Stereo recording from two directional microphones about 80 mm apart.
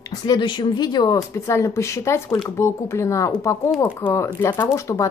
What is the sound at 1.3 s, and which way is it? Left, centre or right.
Speech, left.